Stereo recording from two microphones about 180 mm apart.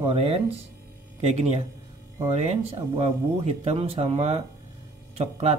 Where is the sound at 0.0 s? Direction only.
35° right (ahead or behind).